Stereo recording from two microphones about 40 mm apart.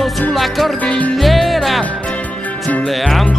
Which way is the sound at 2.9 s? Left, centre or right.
Centre.